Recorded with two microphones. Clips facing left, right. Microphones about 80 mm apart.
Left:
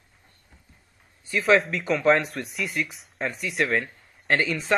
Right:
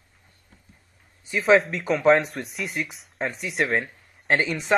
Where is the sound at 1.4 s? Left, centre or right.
Centre.